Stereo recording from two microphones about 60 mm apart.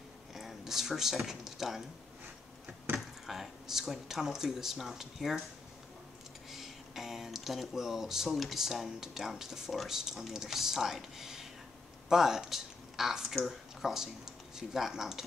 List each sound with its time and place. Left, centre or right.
0.3 s speech: centre
2.9 s door: right
3.3 s speech: centre
6.5 s speech: centre